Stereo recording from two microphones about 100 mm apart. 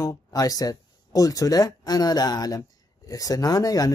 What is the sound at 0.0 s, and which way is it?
Speech, 35° left (ahead or behind).